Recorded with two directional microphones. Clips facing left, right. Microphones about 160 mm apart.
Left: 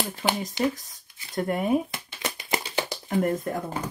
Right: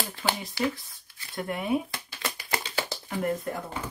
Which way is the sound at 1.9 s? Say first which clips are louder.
Left 2 dB; 20° left (ahead or behind).